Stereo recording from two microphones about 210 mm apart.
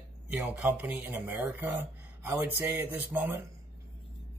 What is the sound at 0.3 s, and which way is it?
Speech, 5° right (ahead or behind).